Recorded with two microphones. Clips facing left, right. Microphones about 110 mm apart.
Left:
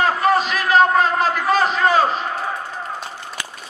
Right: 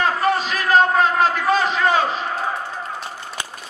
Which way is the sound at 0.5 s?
40° right (ahead or behind).